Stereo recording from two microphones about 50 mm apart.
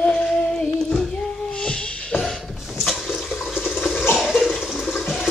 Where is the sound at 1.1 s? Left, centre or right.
Centre.